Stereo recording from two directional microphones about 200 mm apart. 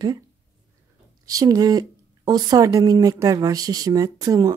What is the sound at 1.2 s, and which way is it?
Speech, 20° right (ahead or behind).